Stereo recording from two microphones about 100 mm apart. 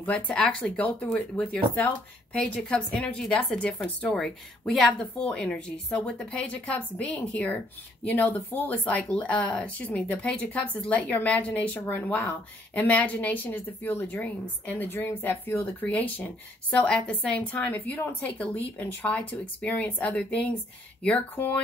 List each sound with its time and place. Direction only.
0.0 s speech: 15° left (ahead or behind)